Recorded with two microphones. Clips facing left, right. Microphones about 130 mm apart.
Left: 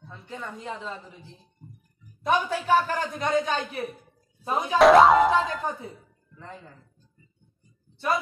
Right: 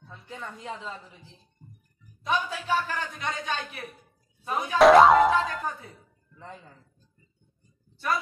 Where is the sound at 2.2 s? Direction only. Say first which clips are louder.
Left 4 dB; 45° left (ahead or behind).